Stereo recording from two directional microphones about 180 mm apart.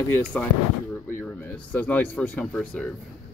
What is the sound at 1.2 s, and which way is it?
Speech, 10° left (ahead or behind).